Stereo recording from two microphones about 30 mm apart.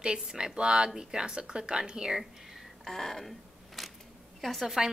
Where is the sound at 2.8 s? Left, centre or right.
Centre.